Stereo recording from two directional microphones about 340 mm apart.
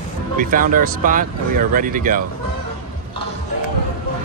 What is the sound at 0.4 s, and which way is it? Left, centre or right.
Speech, right.